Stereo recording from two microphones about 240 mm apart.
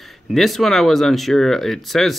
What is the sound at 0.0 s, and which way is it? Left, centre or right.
Speech, centre.